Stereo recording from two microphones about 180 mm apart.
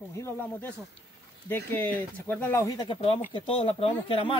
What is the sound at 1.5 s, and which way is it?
Speech, 10° left (ahead or behind).